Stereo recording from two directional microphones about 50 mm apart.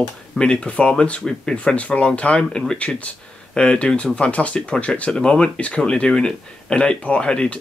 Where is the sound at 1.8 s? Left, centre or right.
Left.